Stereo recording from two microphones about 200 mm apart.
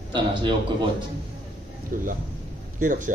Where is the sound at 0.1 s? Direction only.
25° right (ahead or behind).